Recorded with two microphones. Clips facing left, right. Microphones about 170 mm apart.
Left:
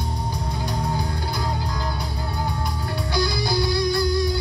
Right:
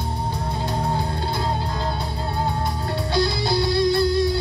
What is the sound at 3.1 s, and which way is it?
Music, 25° right (ahead or behind).